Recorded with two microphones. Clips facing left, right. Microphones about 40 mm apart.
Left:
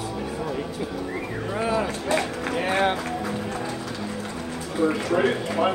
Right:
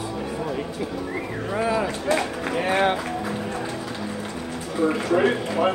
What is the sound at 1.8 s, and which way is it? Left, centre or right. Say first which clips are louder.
Run: right 1 dB; centre.